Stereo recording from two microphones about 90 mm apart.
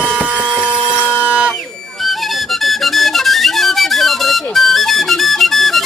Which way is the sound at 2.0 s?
Centre (ahead or behind).